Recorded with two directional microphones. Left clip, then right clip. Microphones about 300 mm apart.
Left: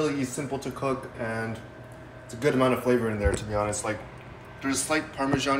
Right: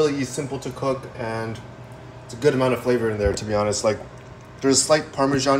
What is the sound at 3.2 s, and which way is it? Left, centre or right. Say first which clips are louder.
A man's voice: right 5 dB; right.